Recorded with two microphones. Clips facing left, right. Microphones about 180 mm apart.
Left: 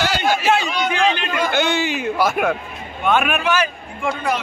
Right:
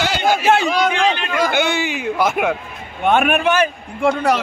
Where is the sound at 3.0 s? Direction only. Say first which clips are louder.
Right 3 dB; 50° right (ahead or behind).